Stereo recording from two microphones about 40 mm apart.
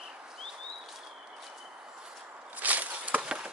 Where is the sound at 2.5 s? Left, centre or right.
Right.